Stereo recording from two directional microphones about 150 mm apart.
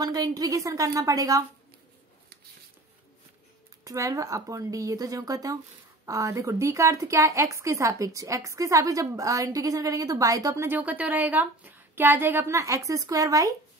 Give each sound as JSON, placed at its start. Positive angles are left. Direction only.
{"t": 0.0, "sound": "a woman's voice", "side_deg": -25}
{"t": 3.8, "sound": "a woman's voice", "side_deg": -20}